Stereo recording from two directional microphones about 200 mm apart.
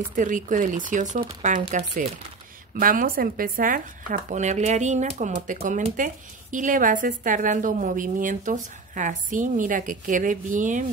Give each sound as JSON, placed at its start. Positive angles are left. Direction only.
{"t": 0.1, "sound": "speech", "side_deg": -40}